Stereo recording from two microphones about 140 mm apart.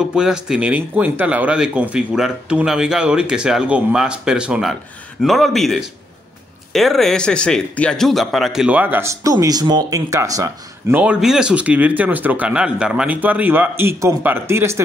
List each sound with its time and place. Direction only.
0.0 s speech: 5° right (ahead or behind)
9.2 s speech: 25° right (ahead or behind)
10.9 s speech: 10° right (ahead or behind)